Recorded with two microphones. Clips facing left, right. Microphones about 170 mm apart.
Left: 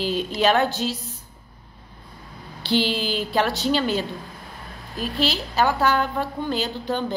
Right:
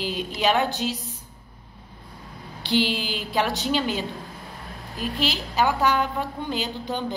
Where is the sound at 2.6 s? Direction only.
15° right (ahead or behind).